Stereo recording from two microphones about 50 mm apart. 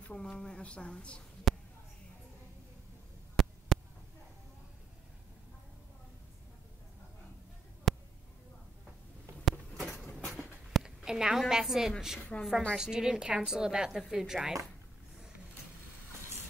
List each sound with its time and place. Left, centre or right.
0.0 s a woman's voice: centre
1.5 s a sound: centre
3.3 s hum: centre
7.9 s a sound: centre
9.4 s a sound: centre
10.2 s writing: centre
10.8 s a woman's voice: centre
12.3 s a woman's voice: left
12.7 s a woman's voice: centre